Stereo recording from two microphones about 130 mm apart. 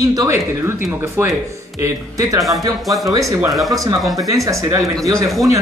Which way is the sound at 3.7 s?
25° right (ahead or behind).